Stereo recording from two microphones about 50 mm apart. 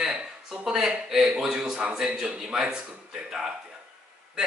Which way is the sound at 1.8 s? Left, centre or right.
Centre.